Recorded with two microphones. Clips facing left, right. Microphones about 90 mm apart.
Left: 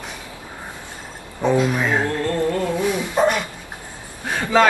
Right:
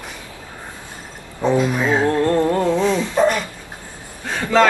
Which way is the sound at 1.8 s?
20° right (ahead or behind).